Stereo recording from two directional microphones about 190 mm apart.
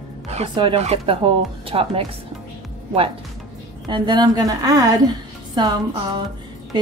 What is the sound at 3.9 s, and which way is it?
Speech, 25° right (ahead or behind).